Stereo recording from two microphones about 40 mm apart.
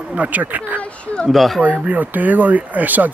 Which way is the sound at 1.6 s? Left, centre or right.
Right.